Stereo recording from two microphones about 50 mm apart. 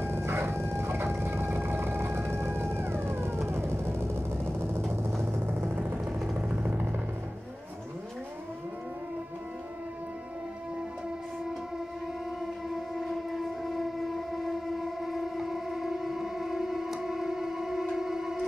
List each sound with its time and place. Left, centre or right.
0.0 s vehicle: right
5.5 s vehicle: right
6.5 s vehicle: right
12.9 s train: centre